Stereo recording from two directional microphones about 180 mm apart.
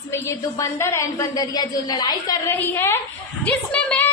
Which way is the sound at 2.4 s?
10° left (ahead or behind).